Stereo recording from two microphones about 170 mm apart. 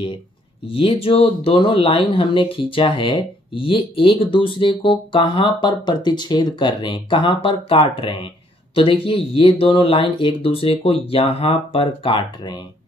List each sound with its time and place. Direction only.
0.7 s speech: 30° left (ahead or behind)